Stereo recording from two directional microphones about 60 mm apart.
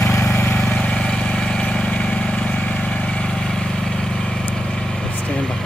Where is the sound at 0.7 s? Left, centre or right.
Left.